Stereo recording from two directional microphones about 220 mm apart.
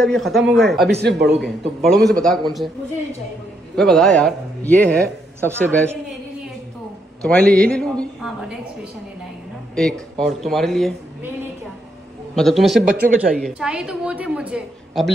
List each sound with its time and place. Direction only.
0.0 s a woman's voice: centre (ahead or behind)
1.0 s a man's voice: 50° right (ahead or behind)
1.8 s a woman's voice: centre (ahead or behind)
3.7 s a woman's voice: centre (ahead or behind)
7.2 s a woman's voice: 5° left (ahead or behind)
9.8 s a woman's voice: centre (ahead or behind)
12.4 s a woman's voice: centre (ahead or behind)